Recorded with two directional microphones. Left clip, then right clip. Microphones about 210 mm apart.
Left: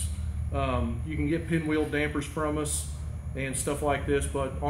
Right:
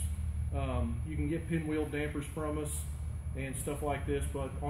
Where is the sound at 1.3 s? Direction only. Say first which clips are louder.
Left 7 dB; 10° left (ahead or behind).